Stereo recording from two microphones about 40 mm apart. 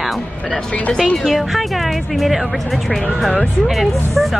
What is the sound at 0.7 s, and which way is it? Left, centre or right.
Speech, left.